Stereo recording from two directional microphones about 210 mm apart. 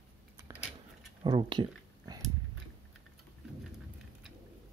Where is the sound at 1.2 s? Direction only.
20° right (ahead or behind).